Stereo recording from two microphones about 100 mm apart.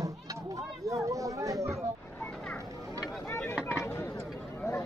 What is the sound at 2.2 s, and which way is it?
Children playing, 15° left (ahead or behind).